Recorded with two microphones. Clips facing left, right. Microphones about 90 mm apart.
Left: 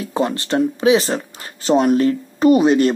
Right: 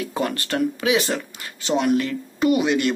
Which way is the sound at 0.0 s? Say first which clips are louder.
Left 4 dB; 25° left (ahead or behind).